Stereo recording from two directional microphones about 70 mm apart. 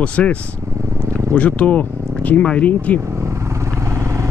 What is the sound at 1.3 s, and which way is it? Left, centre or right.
Speech, centre.